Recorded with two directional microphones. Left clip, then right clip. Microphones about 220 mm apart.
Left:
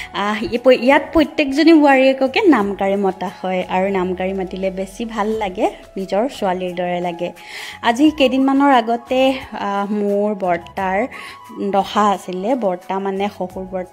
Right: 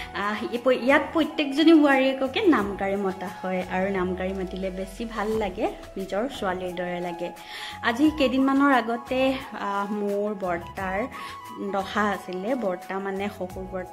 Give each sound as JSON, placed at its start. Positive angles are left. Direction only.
{"t": 0.1, "sound": "a woman's voice", "side_deg": 35}